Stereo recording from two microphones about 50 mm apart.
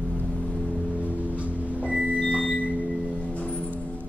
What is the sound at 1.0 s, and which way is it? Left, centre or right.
Music, right.